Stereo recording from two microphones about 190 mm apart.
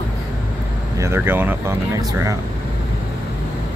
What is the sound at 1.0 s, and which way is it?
Speech, 15° right (ahead or behind).